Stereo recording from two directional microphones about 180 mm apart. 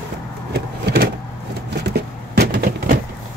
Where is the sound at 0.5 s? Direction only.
65° right (ahead or behind).